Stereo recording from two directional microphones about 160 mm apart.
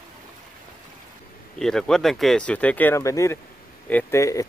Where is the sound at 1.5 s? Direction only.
5° left (ahead or behind).